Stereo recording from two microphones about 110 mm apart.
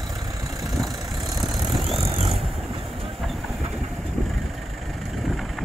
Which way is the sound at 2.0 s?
55° right (ahead or behind).